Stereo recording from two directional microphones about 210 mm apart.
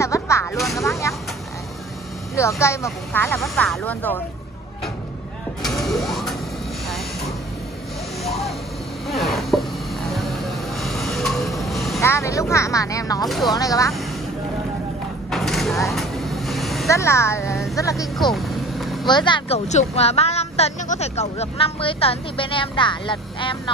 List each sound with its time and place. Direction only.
0.0 s a sound: 15° left (ahead or behind)
0.7 s speech: 15° left (ahead or behind)
2.3 s speech: 15° left (ahead or behind)
5.6 s vehicle: centre (ahead or behind)
9.0 s a sound: centre (ahead or behind)
10.8 s vehicle: centre (ahead or behind)
12.0 s speech: 15° left (ahead or behind)
13.3 s speech: centre (ahead or behind)
13.6 s speech: 15° left (ahead or behind)
15.3 s vehicle: centre (ahead or behind)
16.8 s speech: 15° left (ahead or behind)
18.1 s vehicle: centre (ahead or behind)
19.0 s a woman's voice: 20° left (ahead or behind)